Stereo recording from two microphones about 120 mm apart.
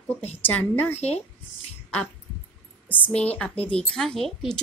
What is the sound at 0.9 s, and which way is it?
Speech, 60° left (ahead or behind).